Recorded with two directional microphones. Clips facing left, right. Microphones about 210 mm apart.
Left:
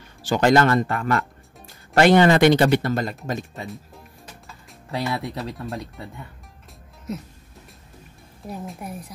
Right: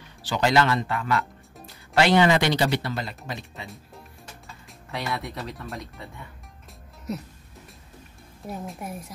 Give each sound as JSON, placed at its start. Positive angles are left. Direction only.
{"t": 0.2, "sound": "speech", "side_deg": 45}
{"t": 3.6, "sound": "a woman's voice", "side_deg": 0}
{"t": 4.9, "sound": "speech", "side_deg": 30}
{"t": 8.5, "sound": "a woman's voice", "side_deg": 0}